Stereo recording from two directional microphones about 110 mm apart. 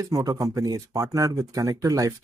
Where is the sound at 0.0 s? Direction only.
35° right (ahead or behind).